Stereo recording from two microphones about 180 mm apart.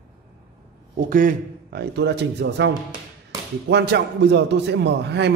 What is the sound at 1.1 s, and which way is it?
A man's voice, 55° right (ahead or behind).